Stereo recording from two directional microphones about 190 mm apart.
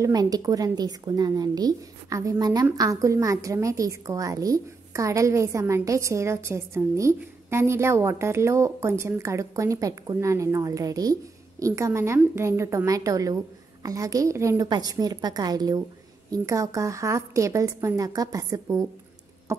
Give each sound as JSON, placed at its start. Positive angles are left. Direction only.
{"t": 0.0, "sound": "a woman's voice", "side_deg": -20}